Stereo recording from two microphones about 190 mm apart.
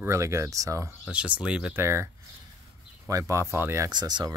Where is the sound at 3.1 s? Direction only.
15° right (ahead or behind).